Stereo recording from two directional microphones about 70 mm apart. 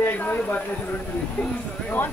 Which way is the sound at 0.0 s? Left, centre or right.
Left.